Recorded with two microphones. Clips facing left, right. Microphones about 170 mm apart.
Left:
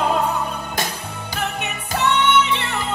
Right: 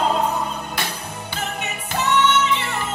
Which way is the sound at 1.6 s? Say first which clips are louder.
Left 3 dB; 65° left (ahead or behind).